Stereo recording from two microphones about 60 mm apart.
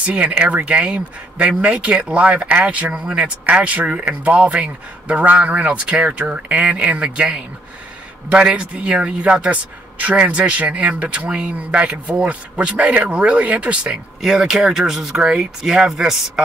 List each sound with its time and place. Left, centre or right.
0.0 s speech: centre